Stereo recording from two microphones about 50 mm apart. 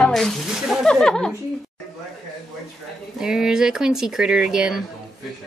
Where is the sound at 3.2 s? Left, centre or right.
Centre.